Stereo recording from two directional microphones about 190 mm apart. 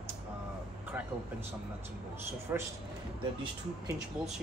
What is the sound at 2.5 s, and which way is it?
Speech, 10° right (ahead or behind).